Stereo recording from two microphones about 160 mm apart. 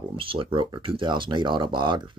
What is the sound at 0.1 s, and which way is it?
Speech, 35° right (ahead or behind).